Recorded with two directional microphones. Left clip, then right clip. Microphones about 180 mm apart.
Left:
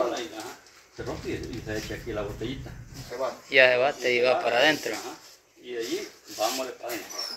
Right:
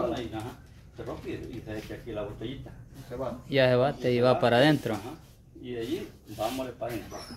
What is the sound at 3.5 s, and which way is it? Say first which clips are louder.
Speech: left 4 dB; 20° right (ahead or behind).